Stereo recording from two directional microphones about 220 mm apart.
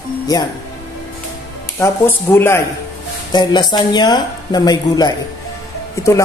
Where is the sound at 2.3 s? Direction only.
10° left (ahead or behind).